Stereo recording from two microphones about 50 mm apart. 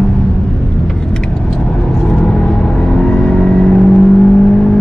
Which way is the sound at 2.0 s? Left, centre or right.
Centre.